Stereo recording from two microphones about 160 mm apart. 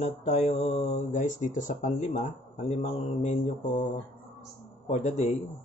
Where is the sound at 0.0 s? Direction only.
45° left (ahead or behind).